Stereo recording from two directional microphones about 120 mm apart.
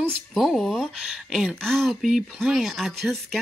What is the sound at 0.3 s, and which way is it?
Speech, centre (ahead or behind).